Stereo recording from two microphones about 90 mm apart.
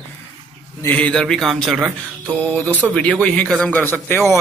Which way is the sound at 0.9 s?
15° left (ahead or behind).